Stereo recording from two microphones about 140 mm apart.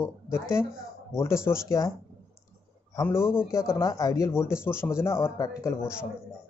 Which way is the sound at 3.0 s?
15° left (ahead or behind).